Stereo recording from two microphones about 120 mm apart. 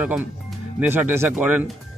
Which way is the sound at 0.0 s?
10° right (ahead or behind).